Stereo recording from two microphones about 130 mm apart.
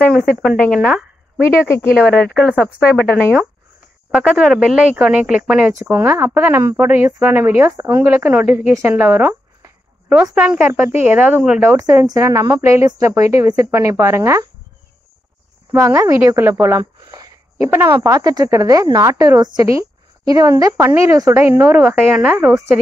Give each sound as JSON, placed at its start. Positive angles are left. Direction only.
{"t": 0.4, "sound": "a woman's voice", "side_deg": 5}
{"t": 2.0, "sound": "speech", "side_deg": 5}
{"t": 4.1, "sound": "a woman's voice", "side_deg": -5}
{"t": 5.8, "sound": "a woman's voice", "side_deg": -20}
{"t": 10.3, "sound": "a woman's voice", "side_deg": -10}
{"t": 15.8, "sound": "speech", "side_deg": -25}
{"t": 16.7, "sound": "a sound", "side_deg": -25}
{"t": 17.6, "sound": "a woman's voice", "side_deg": -20}